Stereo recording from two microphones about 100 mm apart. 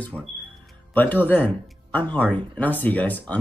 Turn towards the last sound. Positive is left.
turn(degrees=15)  # may be behind; listen again after turning